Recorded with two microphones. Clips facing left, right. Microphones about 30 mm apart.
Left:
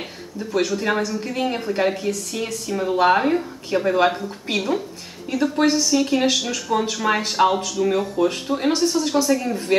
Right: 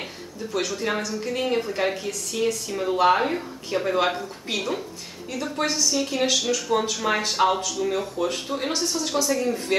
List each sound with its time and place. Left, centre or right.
0.5 s speech: centre
6.4 s speech: centre
7.8 s speech: centre